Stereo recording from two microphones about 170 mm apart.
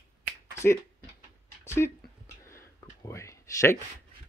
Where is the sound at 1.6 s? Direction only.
15° left (ahead or behind).